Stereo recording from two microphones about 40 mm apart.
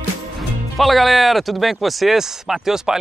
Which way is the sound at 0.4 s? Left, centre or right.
Centre.